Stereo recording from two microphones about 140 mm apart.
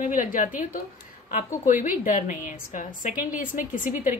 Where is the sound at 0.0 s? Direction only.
70° left (ahead or behind).